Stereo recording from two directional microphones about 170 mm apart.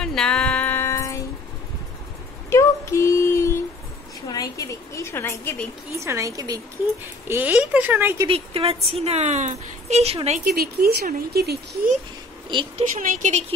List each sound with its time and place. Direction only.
0.0 s music: 5° left (ahead or behind)
2.5 s a sound: 15° left (ahead or behind)
5.9 s a woman's voice: 15° right (ahead or behind)
7.2 s speech: 10° right (ahead or behind)
8.3 s a woman's voice: 35° right (ahead or behind)
10.4 s speech: 65° right (ahead or behind)
12.4 s a woman's voice: 25° right (ahead or behind)
13.0 s speech: 50° right (ahead or behind)